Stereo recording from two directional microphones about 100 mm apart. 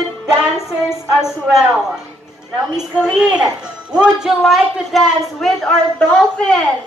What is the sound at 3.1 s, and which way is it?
Speech, 5° right (ahead or behind).